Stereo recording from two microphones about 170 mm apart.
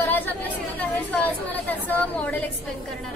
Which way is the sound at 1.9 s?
10° left (ahead or behind).